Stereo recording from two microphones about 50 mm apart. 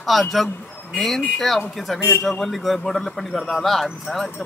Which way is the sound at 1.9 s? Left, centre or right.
Left.